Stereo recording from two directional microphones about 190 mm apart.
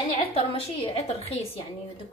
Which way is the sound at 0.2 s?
30° left (ahead or behind).